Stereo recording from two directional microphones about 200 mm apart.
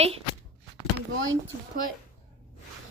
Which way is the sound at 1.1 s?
75° right (ahead or behind).